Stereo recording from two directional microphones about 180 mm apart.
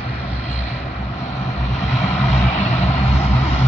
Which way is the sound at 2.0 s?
40° left (ahead or behind).